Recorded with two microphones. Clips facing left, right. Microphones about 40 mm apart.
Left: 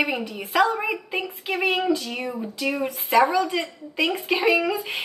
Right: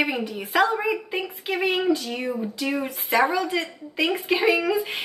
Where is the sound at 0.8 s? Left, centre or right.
Centre.